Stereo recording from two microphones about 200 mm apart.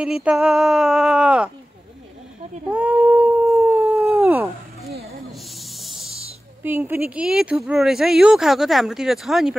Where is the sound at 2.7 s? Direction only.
10° right (ahead or behind).